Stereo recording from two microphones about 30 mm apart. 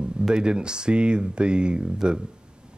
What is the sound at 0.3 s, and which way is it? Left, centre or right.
Speech, right.